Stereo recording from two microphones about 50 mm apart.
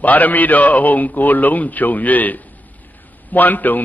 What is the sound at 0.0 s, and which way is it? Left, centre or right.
A man's voice, left.